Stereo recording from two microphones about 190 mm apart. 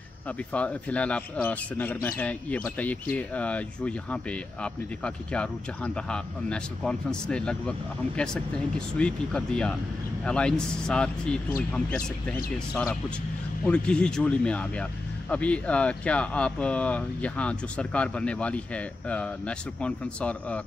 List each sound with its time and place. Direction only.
0.5 s speech: 5° left (ahead or behind)
13.7 s speech: 5° left (ahead or behind)